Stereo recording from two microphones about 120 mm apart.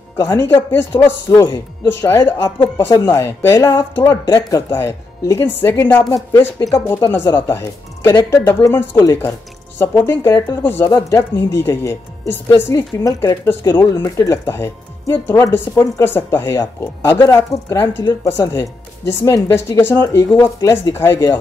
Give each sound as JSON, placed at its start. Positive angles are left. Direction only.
{"t": 0.2, "sound": "speech", "side_deg": 20}
{"t": 1.9, "sound": "speech", "side_deg": 25}
{"t": 6.0, "sound": "speech", "side_deg": 30}